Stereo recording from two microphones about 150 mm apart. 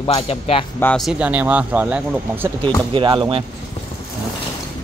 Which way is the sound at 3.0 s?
35° right (ahead or behind).